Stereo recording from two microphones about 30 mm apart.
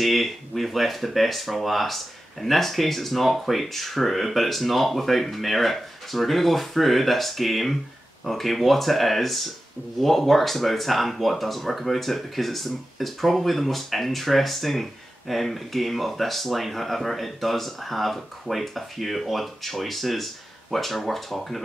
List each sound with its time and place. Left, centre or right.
0.0 s speech: centre